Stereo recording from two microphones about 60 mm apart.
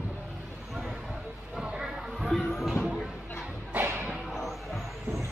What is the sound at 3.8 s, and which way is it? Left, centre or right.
Music, right.